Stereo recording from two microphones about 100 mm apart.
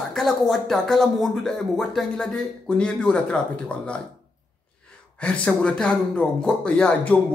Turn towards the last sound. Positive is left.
turn(degrees=10)  # may be behind; listen again after turning